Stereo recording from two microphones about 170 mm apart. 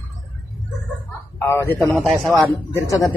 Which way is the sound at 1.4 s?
15° left (ahead or behind).